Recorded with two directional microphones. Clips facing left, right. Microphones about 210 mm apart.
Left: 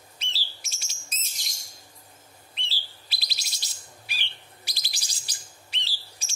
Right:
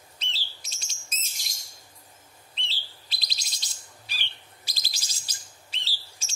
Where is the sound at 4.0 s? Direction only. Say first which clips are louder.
Left 1 dB; 15° left (ahead or behind).